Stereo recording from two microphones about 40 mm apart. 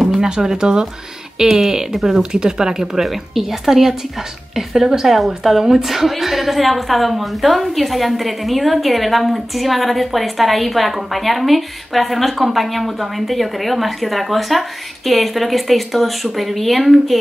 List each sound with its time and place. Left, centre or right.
0.2 s speech: centre
1.4 s a woman's voice: centre